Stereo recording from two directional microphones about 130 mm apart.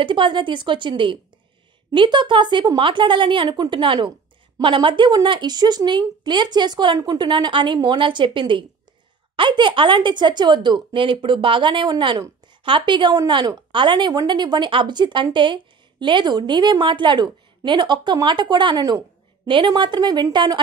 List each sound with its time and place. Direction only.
0.0 s a woman's voice: 40° right (ahead or behind)